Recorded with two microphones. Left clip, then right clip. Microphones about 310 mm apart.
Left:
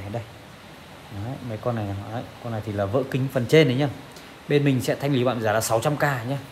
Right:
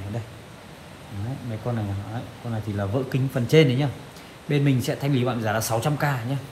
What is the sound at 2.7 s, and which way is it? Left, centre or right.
Speech, left.